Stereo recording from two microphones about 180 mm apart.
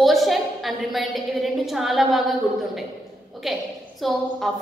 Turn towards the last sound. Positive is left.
turn(degrees=0)  # may be behind; listen again after turning